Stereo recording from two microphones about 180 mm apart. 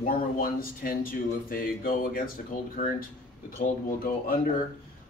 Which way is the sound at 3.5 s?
55° left (ahead or behind).